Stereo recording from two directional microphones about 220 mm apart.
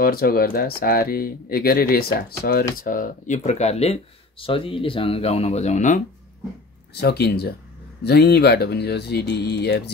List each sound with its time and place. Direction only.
0.0 s speech: 40° left (ahead or behind)
6.9 s speech: 45° left (ahead or behind)